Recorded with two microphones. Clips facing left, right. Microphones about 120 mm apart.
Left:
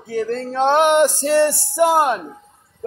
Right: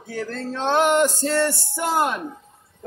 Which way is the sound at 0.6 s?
20° left (ahead or behind).